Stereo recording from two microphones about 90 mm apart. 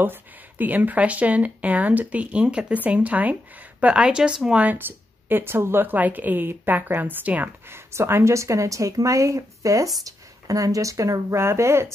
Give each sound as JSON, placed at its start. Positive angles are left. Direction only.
{"t": 0.0, "sound": "speech", "side_deg": -20}
{"t": 7.9, "sound": "a woman's voice", "side_deg": -30}